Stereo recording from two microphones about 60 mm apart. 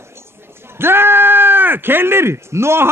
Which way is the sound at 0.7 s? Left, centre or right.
Right.